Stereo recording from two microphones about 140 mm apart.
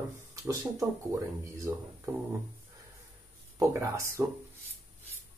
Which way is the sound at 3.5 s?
20° right (ahead or behind).